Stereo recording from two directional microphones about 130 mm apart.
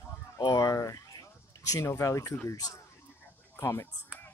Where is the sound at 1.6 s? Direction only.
25° left (ahead or behind).